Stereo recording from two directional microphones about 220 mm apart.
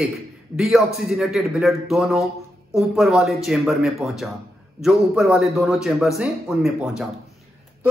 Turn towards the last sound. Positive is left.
turn(degrees=0)  # may be behind; listen again after turning